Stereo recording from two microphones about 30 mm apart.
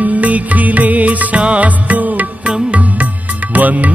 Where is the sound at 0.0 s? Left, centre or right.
Right.